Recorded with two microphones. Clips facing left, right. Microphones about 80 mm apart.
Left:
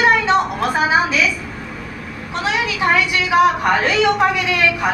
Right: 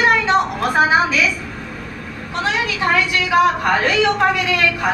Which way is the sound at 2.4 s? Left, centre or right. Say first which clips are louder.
Left 1 dB; centre.